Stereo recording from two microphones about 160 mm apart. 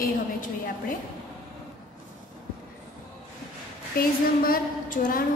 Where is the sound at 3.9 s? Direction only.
65° left (ahead or behind).